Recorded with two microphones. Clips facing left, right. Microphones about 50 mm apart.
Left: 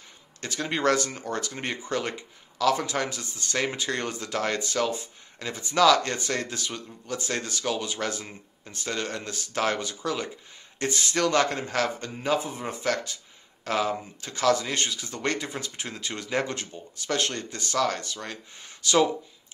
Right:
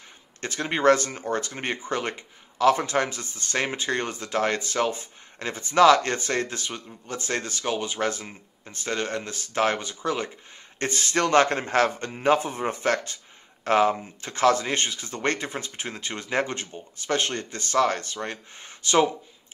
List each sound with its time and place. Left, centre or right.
0.4 s speech: right